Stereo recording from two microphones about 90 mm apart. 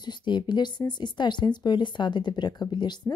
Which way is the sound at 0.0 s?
55° left (ahead or behind).